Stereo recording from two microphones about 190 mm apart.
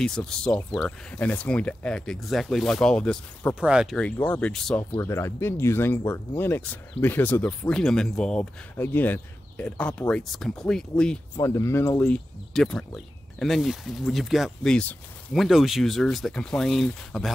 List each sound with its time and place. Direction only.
0.0 s speech: 5° left (ahead or behind)
4.9 s speech: 15° left (ahead or behind)
11.3 s speech: 15° left (ahead or behind)
12.5 s speech: 5° left (ahead or behind)